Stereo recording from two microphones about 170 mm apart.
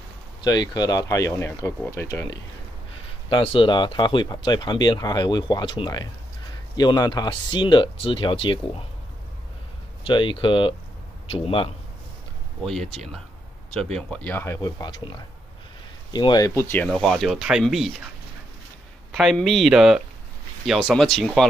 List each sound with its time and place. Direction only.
0.4 s speech: 25° left (ahead or behind)
3.3 s speech: 30° left (ahead or behind)
10.0 s a man's voice: 30° left (ahead or behind)
12.9 s speech: centre (ahead or behind); by 15.0 s 20° left (ahead or behind)
16.1 s speech: 25° left (ahead or behind)
16.9 s speech: centre (ahead or behind)
19.1 s speech: centre (ahead or behind)